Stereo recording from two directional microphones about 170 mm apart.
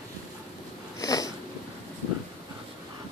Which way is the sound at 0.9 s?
20° left (ahead or behind).